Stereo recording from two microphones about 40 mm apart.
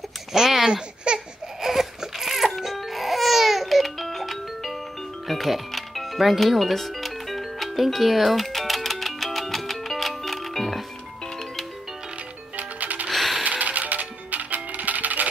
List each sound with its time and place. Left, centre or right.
0.3 s a sound: centre
0.7 s laughter: right
1.6 s music: centre
12.5 s music: right